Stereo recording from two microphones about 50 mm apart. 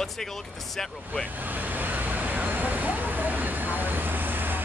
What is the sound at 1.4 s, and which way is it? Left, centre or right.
Vehicle, right.